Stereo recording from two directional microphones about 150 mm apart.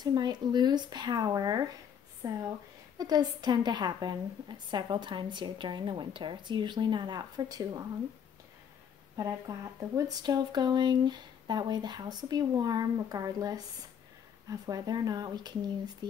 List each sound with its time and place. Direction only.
0.0 s a woman's voice: 30° right (ahead or behind)
9.2 s speech: 25° right (ahead or behind)